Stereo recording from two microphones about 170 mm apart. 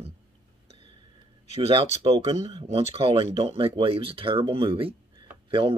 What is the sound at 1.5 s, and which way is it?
Speech, 35° right (ahead or behind).